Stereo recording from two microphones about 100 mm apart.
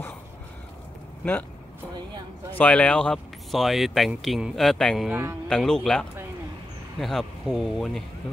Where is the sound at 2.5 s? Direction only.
15° left (ahead or behind).